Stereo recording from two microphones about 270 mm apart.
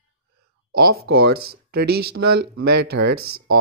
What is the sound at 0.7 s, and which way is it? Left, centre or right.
Speech, right.